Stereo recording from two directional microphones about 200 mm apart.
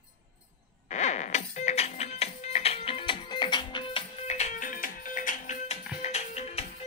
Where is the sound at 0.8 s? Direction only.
35° left (ahead or behind).